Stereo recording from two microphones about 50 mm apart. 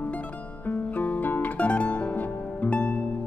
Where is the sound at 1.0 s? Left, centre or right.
Left.